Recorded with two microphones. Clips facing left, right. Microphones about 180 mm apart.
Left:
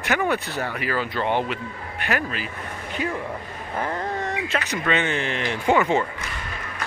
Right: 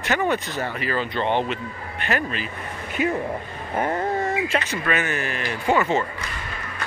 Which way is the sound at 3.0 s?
40° left (ahead or behind).